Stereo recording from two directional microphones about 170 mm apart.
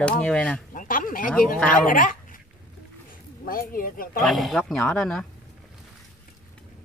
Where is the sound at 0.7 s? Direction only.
55° left (ahead or behind).